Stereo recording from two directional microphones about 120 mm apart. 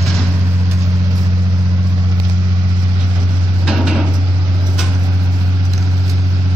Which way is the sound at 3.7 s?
5° right (ahead or behind).